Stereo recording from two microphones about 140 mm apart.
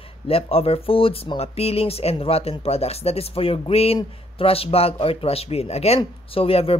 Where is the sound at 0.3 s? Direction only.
45° left (ahead or behind).